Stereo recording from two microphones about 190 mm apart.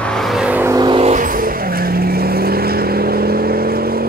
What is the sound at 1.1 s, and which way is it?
Vehicle, 45° right (ahead or behind).